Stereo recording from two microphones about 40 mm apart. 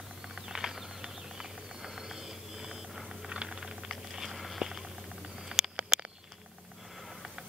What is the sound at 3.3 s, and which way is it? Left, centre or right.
Typing, right.